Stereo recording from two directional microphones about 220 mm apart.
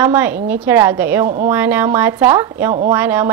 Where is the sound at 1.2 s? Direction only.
35° right (ahead or behind).